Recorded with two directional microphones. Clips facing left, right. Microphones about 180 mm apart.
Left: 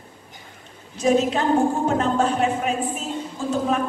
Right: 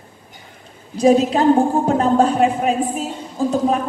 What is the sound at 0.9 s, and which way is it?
A woman's voice, 35° right (ahead or behind).